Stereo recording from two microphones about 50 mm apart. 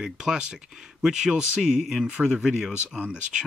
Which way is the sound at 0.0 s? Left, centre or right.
Centre.